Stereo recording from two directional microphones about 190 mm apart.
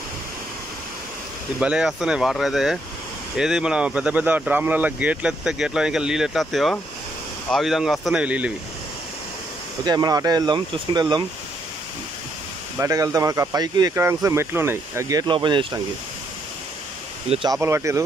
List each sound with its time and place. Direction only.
1.6 s speech: 5° right (ahead or behind)
9.8 s speech: 20° right (ahead or behind)
12.7 s speech: 15° right (ahead or behind)
17.3 s speech: 25° right (ahead or behind)
17.6 s speech: 15° right (ahead or behind)